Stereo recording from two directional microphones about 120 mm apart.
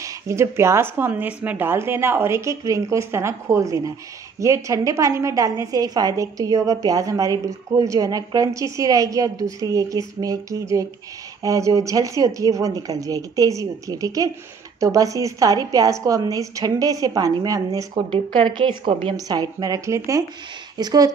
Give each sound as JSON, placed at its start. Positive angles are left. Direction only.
{"t": 0.0, "sound": "a woman's voice", "side_deg": -25}
{"t": 18.1, "sound": "a woman's voice", "side_deg": -45}
{"t": 19.1, "sound": "speech", "side_deg": -30}